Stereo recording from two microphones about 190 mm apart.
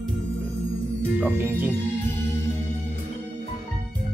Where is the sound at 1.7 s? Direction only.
10° left (ahead or behind).